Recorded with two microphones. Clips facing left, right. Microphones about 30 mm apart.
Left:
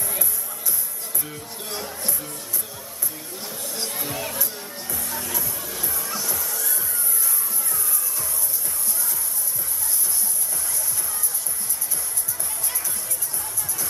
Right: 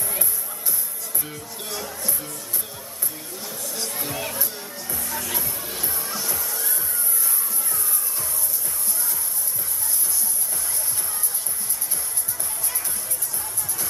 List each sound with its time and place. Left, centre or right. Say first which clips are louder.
3.6 s chatter: left 1 dB; left
3.9 s speech: even; centre
5.0 s speech: right 2 dB; right
5.4 s music: even; centre